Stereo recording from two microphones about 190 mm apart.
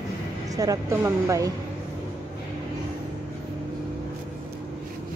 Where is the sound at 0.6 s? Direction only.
15° right (ahead or behind).